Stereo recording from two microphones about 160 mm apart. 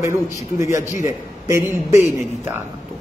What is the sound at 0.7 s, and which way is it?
Speech, 50° left (ahead or behind).